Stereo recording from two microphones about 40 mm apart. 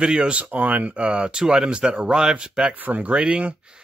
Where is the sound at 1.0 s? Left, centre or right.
Right.